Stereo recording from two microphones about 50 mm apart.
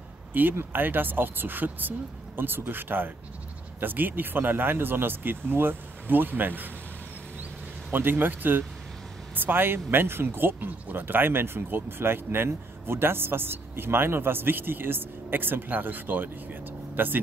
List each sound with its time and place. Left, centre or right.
0.3 s speech: right
7.9 s speech: right